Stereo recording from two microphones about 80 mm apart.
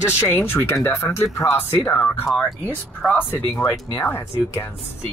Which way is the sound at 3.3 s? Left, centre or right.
Left.